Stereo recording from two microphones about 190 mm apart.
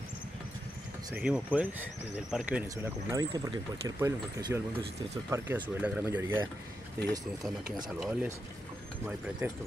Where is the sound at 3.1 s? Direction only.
20° right (ahead or behind).